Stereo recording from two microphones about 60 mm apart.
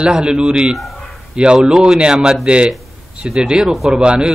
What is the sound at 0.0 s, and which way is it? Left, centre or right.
A man's voice, centre.